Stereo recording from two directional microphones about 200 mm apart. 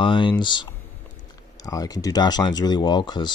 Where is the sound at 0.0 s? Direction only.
25° left (ahead or behind).